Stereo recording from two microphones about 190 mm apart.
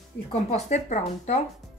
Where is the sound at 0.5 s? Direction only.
35° left (ahead or behind).